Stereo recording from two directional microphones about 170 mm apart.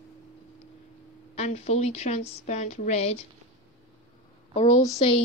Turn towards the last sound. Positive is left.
turn(degrees=35)  # may be behind; listen again after turning